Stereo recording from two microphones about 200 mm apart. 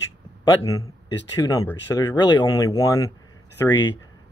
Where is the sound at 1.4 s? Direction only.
15° left (ahead or behind).